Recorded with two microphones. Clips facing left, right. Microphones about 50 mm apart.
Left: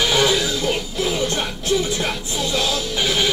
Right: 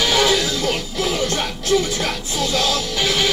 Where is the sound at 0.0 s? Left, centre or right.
Left.